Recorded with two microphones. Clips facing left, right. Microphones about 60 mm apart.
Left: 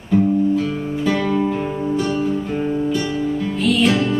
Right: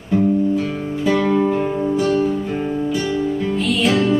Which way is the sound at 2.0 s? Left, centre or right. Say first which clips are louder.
Right 4 dB; centre.